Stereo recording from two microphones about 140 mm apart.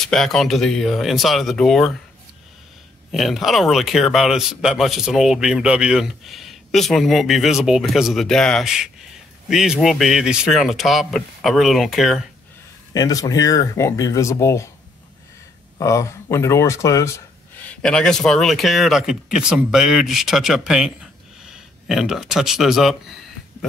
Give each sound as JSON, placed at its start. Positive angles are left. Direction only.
{"t": 0.0, "sound": "speech", "side_deg": 5}
{"t": 3.1, "sound": "speech", "side_deg": 0}
{"t": 12.9, "sound": "speech", "side_deg": 25}
{"t": 15.8, "sound": "speech", "side_deg": 20}
{"t": 17.6, "sound": "speech", "side_deg": 5}